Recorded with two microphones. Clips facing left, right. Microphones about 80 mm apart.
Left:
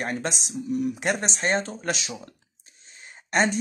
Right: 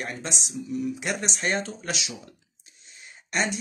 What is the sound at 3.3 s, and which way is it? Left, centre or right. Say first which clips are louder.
Speech: left 5 dB; left.